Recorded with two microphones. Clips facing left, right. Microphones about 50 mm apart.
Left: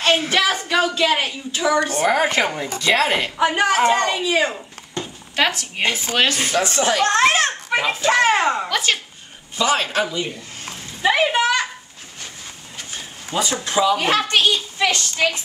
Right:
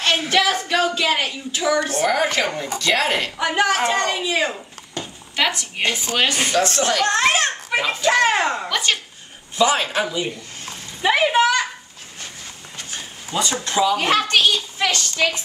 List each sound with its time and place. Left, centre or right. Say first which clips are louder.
0.2 s a woman's voice: right 1 dB; centre
4.9 s a sound: left 2 dB; centre
5.5 s a man's voice: left 1 dB; centre
6.2 s speech: right 1 dB; centre
6.5 s a woman's voice: even; centre
12.9 s a sound: left 1 dB; centre
13.7 s a woman's voice: left 1 dB; centre